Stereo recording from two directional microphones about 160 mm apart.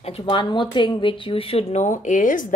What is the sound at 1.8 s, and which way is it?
Speech, 50° left (ahead or behind).